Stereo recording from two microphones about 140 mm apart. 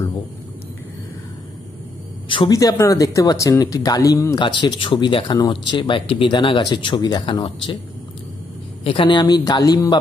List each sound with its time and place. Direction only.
2.2 s speech: 35° left (ahead or behind)
2.5 s speech: 25° left (ahead or behind)
4.4 s speech: 35° left (ahead or behind)
8.8 s speech: 40° left (ahead or behind)